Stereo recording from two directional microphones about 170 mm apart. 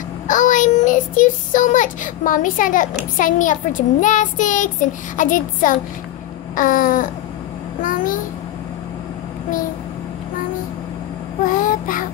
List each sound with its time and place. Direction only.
0.3 s child singing: 50° left (ahead or behind)
3.2 s a child's voice: 50° left (ahead or behind)
11.4 s child singing: 55° left (ahead or behind)